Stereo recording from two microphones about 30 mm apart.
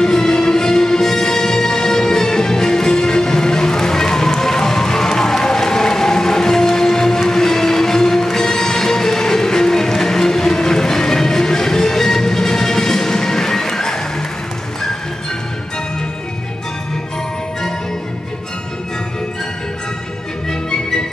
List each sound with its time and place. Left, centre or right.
0.0 s music: centre